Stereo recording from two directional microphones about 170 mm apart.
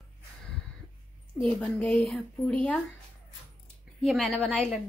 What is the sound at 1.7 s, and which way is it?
Speech, 5° left (ahead or behind).